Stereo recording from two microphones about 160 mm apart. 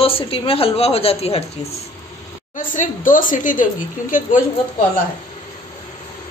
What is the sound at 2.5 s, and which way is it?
A woman's voice, 55° left (ahead or behind).